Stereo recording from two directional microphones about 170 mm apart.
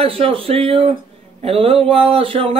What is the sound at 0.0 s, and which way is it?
A man's voice, 35° right (ahead or behind).